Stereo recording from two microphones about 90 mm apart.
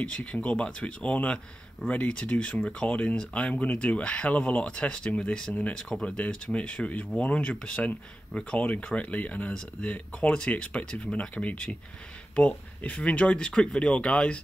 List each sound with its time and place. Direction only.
0.0 s speech: 10° left (ahead or behind)
5.8 s speech: 5° left (ahead or behind)